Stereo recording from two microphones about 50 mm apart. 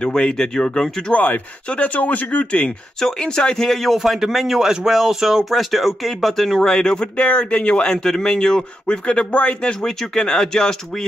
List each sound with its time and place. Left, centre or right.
0.0 s speech: centre
1.1 s speech: left
3.0 s speech: centre
4.0 s speech: centre